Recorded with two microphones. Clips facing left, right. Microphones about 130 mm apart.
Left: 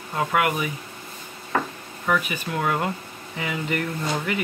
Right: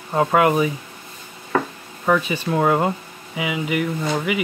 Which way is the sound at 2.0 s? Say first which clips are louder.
Right 5 dB; 30° right (ahead or behind).